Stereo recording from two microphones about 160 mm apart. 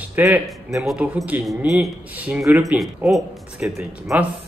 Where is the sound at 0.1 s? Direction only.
20° right (ahead or behind).